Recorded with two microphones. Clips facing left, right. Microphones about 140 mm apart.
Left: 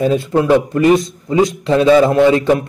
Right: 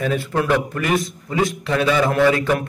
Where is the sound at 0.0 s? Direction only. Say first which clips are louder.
Left 7 dB; 25° left (ahead or behind).